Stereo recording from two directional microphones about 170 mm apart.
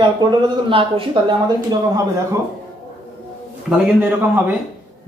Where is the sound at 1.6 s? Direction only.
20° right (ahead or behind).